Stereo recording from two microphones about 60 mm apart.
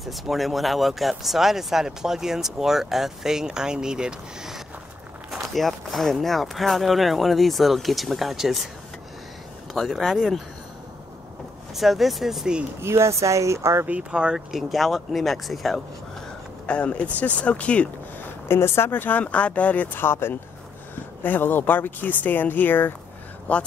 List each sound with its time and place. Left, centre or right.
0.0 s speech: centre
5.3 s speech: centre
9.8 s speech: centre
11.7 s speech: centre
12.8 s speech: right
13.8 s speech: centre
14.3 s speech: centre
16.6 s speech: centre
18.5 s speech: left
18.9 s speech: left
20.0 s speech: left